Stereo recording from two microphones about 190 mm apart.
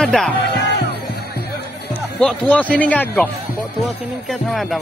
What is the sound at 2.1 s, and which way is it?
Speech, 5° left (ahead or behind).